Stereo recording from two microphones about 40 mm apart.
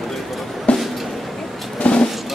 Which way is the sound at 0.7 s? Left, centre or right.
Left.